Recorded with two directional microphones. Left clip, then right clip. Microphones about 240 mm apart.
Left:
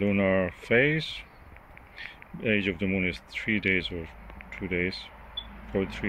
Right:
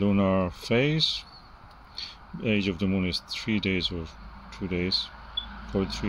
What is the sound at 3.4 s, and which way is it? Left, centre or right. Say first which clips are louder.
Speech: left 5 dB; left.